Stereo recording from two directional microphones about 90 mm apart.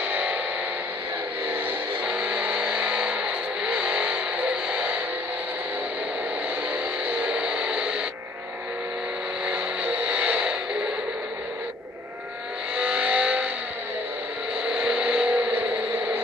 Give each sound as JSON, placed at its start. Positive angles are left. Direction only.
{"t": 0.0, "sound": "music", "side_deg": -20}
{"t": 1.5, "sound": "vehicle", "side_deg": -15}
{"t": 6.7, "sound": "music", "side_deg": -15}
{"t": 9.5, "sound": "vehicle", "side_deg": -15}
{"t": 12.7, "sound": "vehicle", "side_deg": -15}
{"t": 14.6, "sound": "a sound", "side_deg": -10}